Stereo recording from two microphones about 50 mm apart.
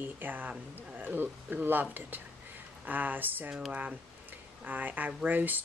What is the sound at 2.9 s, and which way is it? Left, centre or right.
Speech, right.